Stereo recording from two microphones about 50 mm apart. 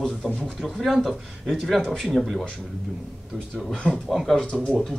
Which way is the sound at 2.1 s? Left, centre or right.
Centre.